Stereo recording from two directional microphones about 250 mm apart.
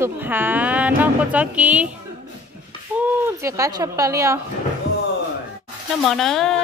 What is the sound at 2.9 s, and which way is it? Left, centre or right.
A woman's voice, centre.